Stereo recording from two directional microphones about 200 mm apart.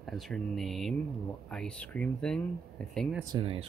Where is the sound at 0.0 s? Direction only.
Centre (ahead or behind).